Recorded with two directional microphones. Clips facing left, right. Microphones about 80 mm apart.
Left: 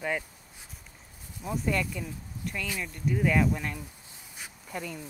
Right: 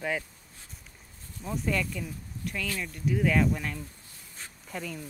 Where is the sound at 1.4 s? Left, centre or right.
Centre.